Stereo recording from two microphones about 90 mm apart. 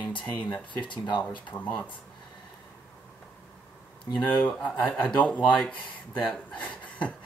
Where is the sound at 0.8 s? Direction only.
60° left (ahead or behind).